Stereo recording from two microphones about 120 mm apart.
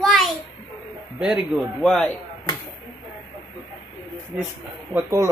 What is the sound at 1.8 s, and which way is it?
Speech, 5° left (ahead or behind).